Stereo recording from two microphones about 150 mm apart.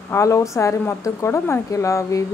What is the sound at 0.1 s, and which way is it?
A woman's voice, 20° left (ahead or behind).